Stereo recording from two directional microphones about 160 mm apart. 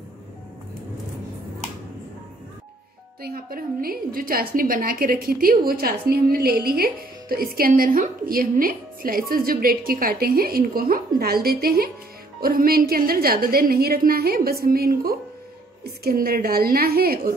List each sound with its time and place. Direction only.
3.2 s a woman's voice: 70° right (ahead or behind)